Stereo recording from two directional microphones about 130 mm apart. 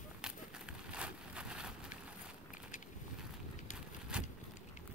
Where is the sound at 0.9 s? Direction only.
10° right (ahead or behind).